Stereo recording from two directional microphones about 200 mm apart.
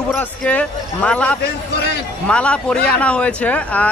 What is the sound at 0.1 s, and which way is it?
Speech, 5° left (ahead or behind).